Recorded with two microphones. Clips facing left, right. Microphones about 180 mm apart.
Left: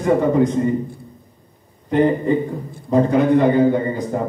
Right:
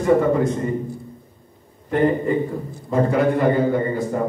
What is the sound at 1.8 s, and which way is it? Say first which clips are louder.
A man's voice: left 2 dB; 20° left (ahead or behind).